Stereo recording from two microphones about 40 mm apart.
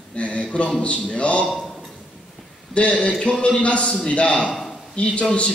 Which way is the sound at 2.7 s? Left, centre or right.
Left.